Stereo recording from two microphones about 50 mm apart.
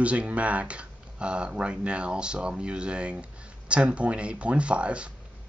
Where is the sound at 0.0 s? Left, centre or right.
Right.